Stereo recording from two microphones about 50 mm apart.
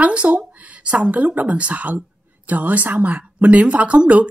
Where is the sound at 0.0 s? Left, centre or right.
Right.